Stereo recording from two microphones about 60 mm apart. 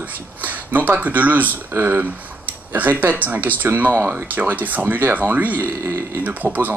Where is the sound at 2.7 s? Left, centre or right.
Right.